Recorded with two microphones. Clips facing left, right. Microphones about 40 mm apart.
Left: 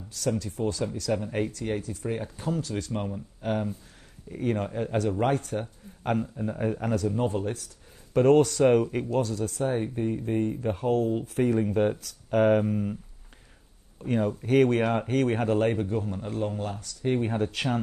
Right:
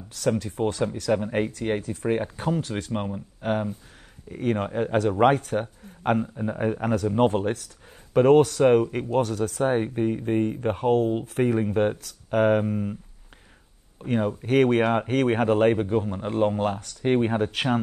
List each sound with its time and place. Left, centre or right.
0.1 s speech: right
4.9 s speech: right
7.2 s speech: right
8.1 s speech: right
9.2 s speech: right
10.0 s speech: right
11.4 s speech: right
14.0 s speech: centre